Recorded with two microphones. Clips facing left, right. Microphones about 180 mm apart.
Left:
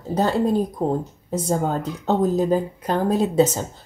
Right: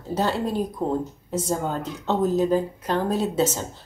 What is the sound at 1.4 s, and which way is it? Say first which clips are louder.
Speech: left 5 dB; 45° left (ahead or behind).